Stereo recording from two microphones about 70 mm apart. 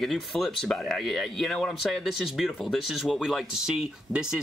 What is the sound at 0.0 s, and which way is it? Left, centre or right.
Speech, centre.